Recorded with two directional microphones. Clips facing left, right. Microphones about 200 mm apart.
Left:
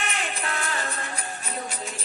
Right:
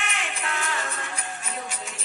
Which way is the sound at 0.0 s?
35° left (ahead or behind).